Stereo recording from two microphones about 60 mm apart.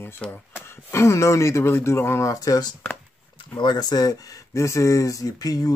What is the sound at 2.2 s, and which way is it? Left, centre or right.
Speech, left.